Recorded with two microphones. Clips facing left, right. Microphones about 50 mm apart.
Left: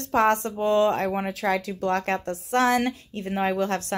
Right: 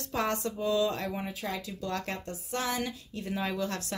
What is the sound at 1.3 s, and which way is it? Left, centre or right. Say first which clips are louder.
Speech: left 11 dB; left.